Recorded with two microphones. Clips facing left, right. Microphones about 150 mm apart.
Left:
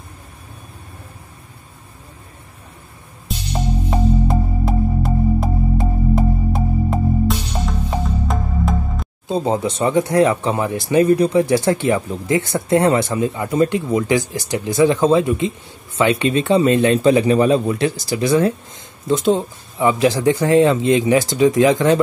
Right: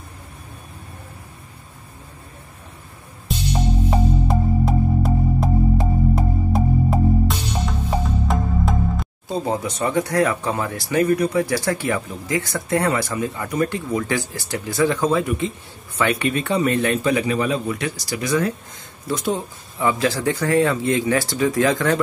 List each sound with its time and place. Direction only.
3.3 s music: centre (ahead or behind)
9.3 s speech: 25° left (ahead or behind)